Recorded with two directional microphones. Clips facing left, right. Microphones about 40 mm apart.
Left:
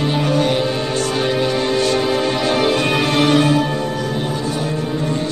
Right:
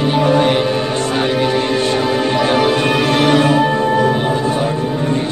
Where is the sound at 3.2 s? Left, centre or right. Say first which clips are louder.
Right 3 dB; right.